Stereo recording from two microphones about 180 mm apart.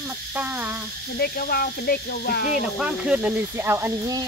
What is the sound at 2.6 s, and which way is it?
Speech, 5° right (ahead or behind).